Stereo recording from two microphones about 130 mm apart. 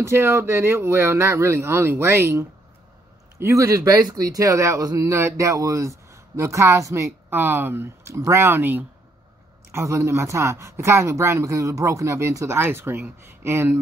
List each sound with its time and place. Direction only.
0.0 s speech: 20° right (ahead or behind)